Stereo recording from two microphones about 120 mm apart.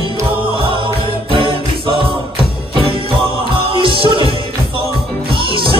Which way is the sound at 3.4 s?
45° right (ahead or behind).